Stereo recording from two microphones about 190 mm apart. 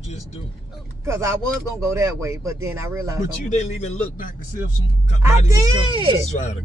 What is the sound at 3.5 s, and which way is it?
Speech, 35° left (ahead or behind).